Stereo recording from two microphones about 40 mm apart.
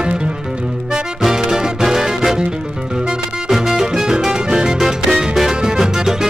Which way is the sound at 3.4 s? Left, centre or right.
Centre.